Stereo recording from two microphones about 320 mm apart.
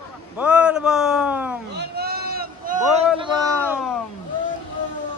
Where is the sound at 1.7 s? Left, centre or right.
Right.